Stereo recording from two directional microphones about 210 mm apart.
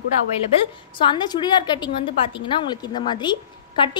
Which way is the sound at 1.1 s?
20° left (ahead or behind).